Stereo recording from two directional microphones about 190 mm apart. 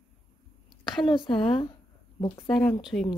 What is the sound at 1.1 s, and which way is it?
Speech, 25° left (ahead or behind).